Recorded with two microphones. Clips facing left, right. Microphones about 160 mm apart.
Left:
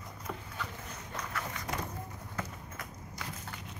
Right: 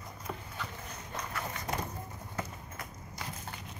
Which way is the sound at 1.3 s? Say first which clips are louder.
Right 2 dB; 25° right (ahead or behind).